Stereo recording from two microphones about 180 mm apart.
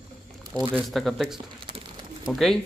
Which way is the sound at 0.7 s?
Centre (ahead or behind).